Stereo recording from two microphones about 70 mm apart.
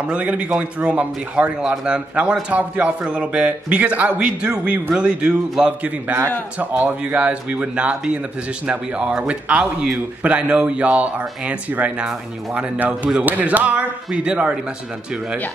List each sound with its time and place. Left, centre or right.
0.1 s a man's voice: centre